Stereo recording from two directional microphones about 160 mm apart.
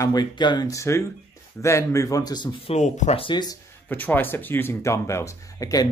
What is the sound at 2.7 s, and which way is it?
Speech, 45° left (ahead or behind).